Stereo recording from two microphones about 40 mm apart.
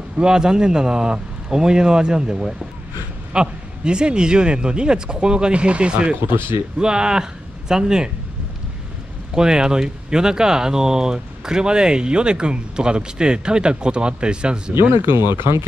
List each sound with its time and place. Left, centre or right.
0.2 s speech: centre
6.2 s speech: right
6.8 s a man's voice: centre
9.3 s speech: centre
14.7 s speech: right